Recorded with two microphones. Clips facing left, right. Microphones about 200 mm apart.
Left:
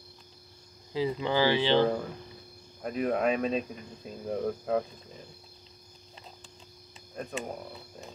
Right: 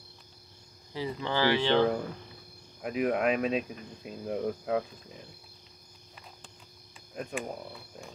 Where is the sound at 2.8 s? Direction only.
5° right (ahead or behind).